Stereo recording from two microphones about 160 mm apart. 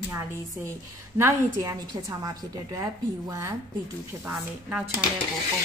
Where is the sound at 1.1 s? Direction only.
15° right (ahead or behind).